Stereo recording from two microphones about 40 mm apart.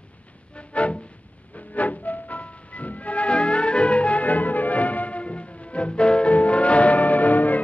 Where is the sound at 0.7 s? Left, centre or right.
Left.